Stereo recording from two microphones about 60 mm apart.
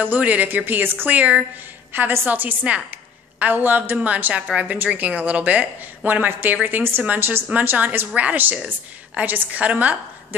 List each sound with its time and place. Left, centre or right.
0.0 s a woman's voice: right